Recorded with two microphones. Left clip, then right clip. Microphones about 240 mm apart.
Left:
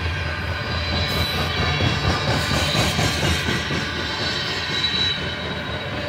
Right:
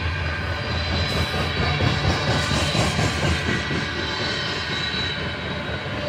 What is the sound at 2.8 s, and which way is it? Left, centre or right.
Train, left.